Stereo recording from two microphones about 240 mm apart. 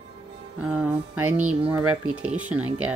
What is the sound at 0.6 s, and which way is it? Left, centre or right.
Music, centre.